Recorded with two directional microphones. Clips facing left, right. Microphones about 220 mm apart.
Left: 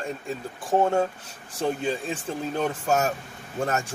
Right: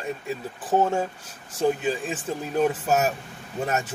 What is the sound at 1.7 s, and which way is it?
Speech, 5° right (ahead or behind).